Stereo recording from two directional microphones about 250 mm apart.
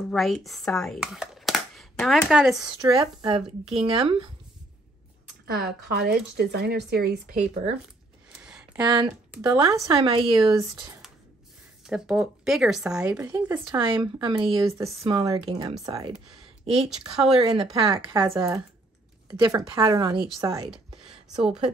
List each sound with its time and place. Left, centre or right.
0.1 s speech: centre
2.8 s speech: centre
5.5 s speech: right
8.5 s a sound: centre
8.8 s speech: centre
11.8 s a woman's voice: centre
20.9 s a sound: centre